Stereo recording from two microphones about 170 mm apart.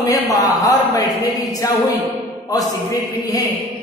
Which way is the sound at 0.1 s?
20° left (ahead or behind).